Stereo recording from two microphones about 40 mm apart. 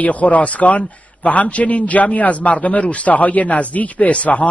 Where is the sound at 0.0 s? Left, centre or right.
Left.